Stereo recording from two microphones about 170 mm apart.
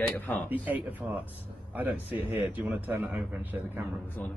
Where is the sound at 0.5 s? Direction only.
10° right (ahead or behind).